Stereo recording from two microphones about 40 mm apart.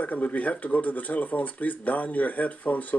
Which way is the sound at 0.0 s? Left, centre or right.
Left.